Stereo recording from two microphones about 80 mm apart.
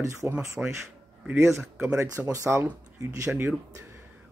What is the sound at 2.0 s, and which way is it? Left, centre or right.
Speech, right.